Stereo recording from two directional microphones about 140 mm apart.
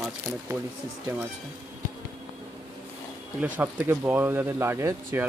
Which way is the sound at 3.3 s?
10° right (ahead or behind).